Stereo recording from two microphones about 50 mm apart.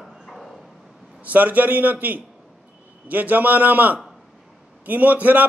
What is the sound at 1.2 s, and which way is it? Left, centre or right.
A man's voice, right.